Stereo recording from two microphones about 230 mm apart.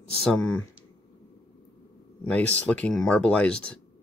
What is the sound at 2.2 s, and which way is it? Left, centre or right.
Speech, centre.